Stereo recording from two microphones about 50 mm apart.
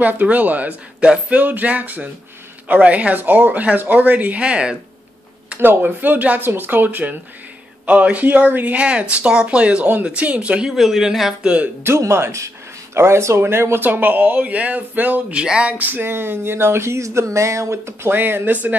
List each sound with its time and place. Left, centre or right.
0.0 s speech: right
1.0 s speech: right
1.4 s speech: right
5.6 s speech: right
8.7 s speech: right
10.7 s speech: centre
11.4 s speech: right
12.0 s speech: right
13.4 s speech: right
13.8 s speech: right
15.3 s speech: centre
15.8 s speech: right
18.1 s speech: right